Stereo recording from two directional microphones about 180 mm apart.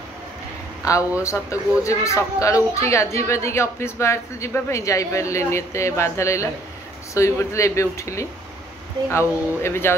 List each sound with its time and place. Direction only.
1.2 s speech: 15° left (ahead or behind)